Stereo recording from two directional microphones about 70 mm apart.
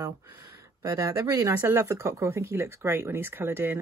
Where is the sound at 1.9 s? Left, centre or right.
Right.